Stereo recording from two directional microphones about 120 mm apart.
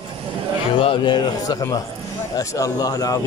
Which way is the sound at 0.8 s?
40° left (ahead or behind).